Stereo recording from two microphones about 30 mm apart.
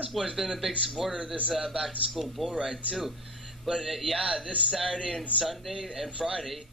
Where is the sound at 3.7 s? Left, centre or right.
Centre.